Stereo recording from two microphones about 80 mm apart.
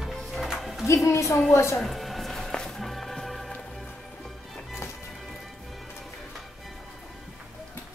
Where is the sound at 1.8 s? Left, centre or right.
Centre.